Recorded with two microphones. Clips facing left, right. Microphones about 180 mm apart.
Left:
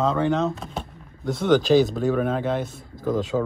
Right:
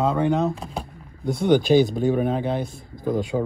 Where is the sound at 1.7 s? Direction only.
15° right (ahead or behind).